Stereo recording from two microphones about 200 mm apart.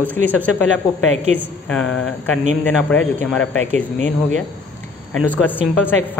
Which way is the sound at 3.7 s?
35° right (ahead or behind).